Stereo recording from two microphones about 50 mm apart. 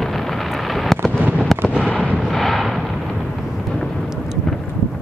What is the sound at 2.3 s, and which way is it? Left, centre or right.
Artillery fire, centre.